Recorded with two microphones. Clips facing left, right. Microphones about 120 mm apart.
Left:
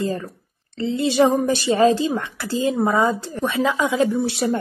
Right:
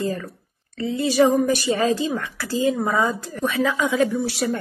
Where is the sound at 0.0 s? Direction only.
25° left (ahead or behind).